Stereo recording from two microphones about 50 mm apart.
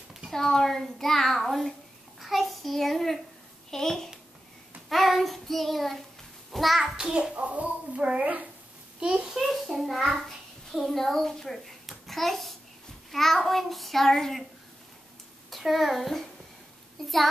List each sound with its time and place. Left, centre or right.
0.3 s a child's voice: centre
7.4 s a woman's voice: right
9.0 s a child's voice: centre
9.4 s a child's voice: centre
15.5 s a child's voice: centre